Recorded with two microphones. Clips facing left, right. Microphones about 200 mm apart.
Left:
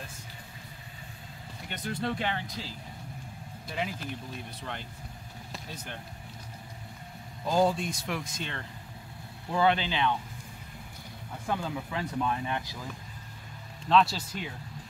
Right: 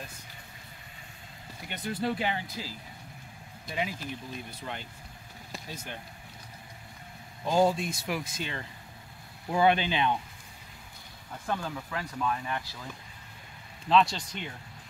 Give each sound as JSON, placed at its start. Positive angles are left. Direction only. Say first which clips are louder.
{"t": 1.7, "sound": "speech", "louder": "right 2 dB", "side_deg": -5}
{"t": 5.5, "sound": "vehicle", "louder": "right 1 dB", "side_deg": 0}
{"t": 7.4, "sound": "speech", "louder": "right 1 dB", "side_deg": 0}
{"t": 9.5, "sound": "speech", "louder": "right 2 dB", "side_deg": -15}
{"t": 11.4, "sound": "speech", "louder": "left 1 dB", "side_deg": 15}
{"t": 13.8, "sound": "speech", "louder": "even", "side_deg": 0}